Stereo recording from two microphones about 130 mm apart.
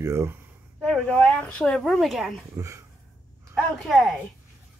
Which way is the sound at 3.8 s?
Centre (ahead or behind).